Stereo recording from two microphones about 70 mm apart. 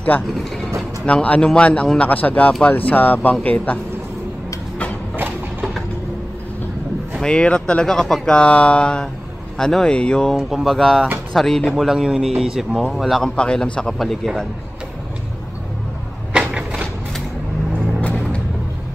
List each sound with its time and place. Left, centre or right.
1.0 s speech: centre
5.1 s a sound: right
7.2 s speech: centre
10.3 s speech: centre
11.7 s a man's voice: centre
13.4 s speech: centre
16.3 s a sound: centre
18.0 s music: centre